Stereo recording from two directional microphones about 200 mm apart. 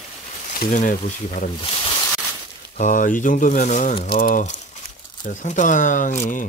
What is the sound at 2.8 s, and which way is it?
Speech, 40° left (ahead or behind).